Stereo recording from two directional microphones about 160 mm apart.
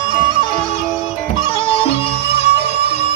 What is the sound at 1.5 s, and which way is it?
Music, 35° left (ahead or behind).